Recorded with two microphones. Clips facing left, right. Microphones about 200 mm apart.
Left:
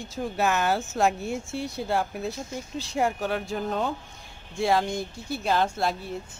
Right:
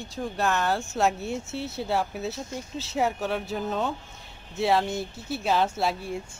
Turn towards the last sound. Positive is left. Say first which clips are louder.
# even
turn(degrees=-5)  # may be behind; listen again after turning